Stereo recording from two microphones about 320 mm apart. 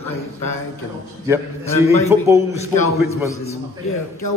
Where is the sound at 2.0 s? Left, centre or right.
Centre.